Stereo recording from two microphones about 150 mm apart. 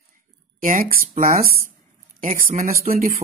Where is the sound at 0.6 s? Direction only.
65° right (ahead or behind).